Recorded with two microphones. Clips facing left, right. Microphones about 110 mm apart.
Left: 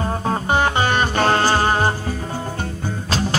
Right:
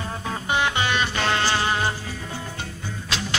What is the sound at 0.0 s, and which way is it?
Music, 40° left (ahead or behind).